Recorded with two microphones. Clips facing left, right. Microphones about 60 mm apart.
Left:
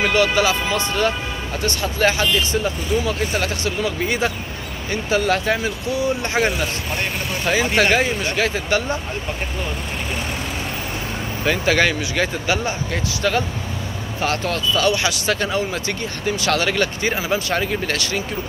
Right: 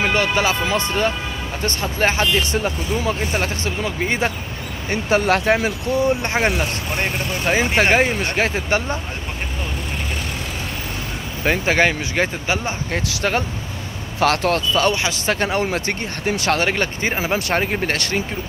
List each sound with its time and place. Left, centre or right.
0.0 s speech: right
5.1 s speech: right
6.3 s speech: right
8.0 s speech: right
11.4 s speech: right
12.9 s speech: right
14.2 s speech: right
15.0 s speech: right
17.1 s speech: right